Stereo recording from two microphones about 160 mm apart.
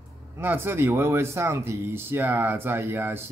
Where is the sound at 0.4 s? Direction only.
15° right (ahead or behind).